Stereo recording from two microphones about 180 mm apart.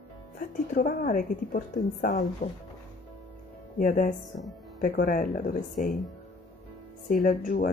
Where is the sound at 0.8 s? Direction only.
55° left (ahead or behind).